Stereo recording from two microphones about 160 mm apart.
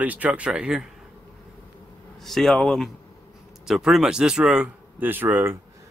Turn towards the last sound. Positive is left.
turn(degrees=-15)  # may be behind; listen again after turning